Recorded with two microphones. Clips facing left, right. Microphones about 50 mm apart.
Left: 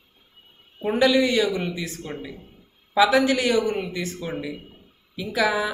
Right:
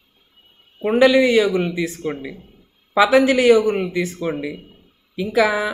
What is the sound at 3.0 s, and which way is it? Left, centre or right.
A man's voice, right.